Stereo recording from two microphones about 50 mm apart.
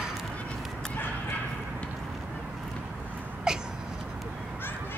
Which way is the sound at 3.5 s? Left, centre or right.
Centre.